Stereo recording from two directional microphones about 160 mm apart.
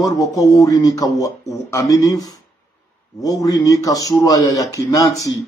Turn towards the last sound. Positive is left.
turn(degrees=20)  # may be behind; listen again after turning